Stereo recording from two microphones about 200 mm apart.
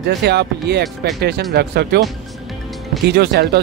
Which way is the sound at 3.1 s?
55° right (ahead or behind).